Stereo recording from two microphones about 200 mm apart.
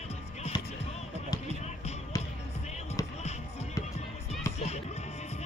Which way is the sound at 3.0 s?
15° left (ahead or behind).